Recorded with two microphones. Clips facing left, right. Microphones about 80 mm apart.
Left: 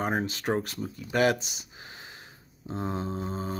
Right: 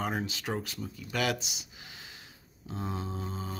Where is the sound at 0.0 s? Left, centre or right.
Left.